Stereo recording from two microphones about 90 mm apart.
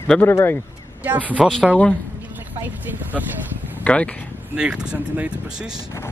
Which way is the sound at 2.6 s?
20° right (ahead or behind).